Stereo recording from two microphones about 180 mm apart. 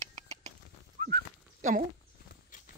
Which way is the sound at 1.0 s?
40° right (ahead or behind).